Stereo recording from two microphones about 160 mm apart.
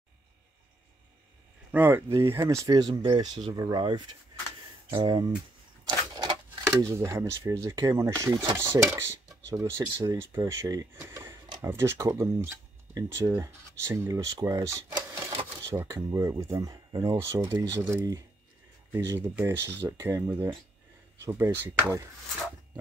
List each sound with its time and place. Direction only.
1.7 s speech: 10° right (ahead or behind)
5.9 s a sound: 30° right (ahead or behind)
6.8 s speech: 20° right (ahead or behind)